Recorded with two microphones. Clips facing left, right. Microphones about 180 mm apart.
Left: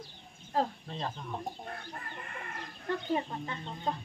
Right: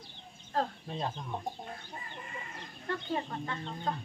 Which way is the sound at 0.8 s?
10° right (ahead or behind).